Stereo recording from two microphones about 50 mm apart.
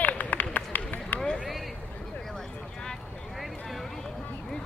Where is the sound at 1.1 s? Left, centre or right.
Left.